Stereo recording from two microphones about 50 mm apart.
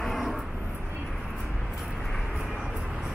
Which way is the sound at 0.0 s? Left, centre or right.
Centre.